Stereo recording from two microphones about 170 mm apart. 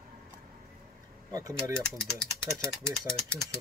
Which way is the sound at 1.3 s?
20° right (ahead or behind).